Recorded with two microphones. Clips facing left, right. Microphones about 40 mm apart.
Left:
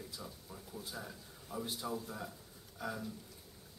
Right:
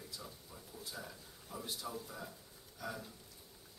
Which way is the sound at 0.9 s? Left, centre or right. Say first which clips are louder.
Left 2 dB; centre.